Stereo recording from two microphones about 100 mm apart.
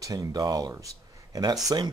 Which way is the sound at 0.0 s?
35° right (ahead or behind).